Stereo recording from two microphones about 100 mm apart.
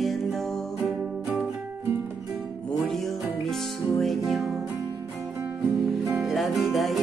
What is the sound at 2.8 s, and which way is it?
Music, centre (ahead or behind).